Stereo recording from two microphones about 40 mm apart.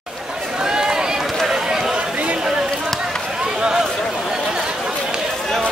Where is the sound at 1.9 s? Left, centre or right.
Right.